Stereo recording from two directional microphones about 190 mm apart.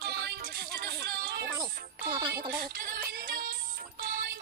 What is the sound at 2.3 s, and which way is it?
Music, 55° right (ahead or behind).